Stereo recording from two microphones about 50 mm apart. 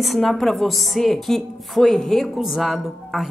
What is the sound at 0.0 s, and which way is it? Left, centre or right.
A woman's voice, centre.